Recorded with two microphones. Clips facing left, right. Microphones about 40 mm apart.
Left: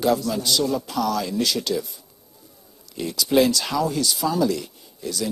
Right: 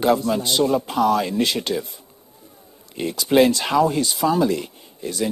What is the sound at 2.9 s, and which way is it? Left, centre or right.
Speech, right.